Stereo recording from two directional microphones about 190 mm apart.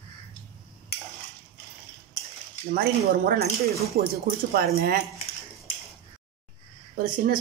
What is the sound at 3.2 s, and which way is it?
Speech, 55° right (ahead or behind).